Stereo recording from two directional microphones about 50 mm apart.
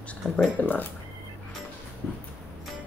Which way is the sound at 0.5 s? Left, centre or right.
Left.